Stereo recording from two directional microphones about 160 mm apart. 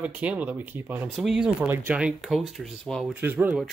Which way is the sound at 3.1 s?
10° right (ahead or behind).